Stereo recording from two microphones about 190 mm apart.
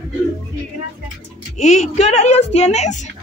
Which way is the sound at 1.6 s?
40° left (ahead or behind).